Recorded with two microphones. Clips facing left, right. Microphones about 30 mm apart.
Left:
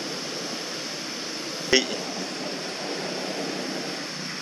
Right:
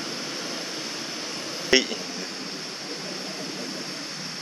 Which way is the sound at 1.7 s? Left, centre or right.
Centre.